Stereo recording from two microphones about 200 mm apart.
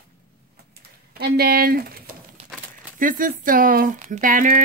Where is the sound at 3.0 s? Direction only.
45° right (ahead or behind).